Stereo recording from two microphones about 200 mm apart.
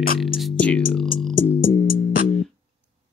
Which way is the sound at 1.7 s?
45° left (ahead or behind).